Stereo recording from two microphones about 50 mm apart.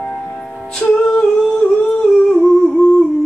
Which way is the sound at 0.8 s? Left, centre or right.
Centre.